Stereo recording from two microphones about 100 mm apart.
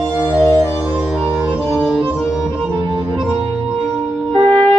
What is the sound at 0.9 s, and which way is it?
Music, 10° right (ahead or behind).